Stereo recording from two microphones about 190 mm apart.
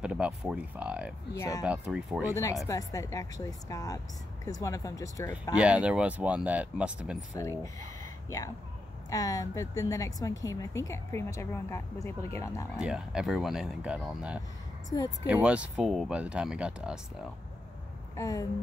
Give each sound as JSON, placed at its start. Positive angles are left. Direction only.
{"t": 0.0, "sound": "speech", "side_deg": -5}
{"t": 1.3, "sound": "a woman's voice", "side_deg": 15}
{"t": 1.7, "sound": "speech", "side_deg": -5}
{"t": 2.6, "sound": "a woman's voice", "side_deg": 15}
{"t": 5.6, "sound": "speech", "side_deg": -5}
{"t": 7.6, "sound": "a sound", "side_deg": 15}
{"t": 9.1, "sound": "a woman's voice", "side_deg": 20}
{"t": 12.7, "sound": "speech", "side_deg": -5}
{"t": 18.1, "sound": "a sound", "side_deg": 15}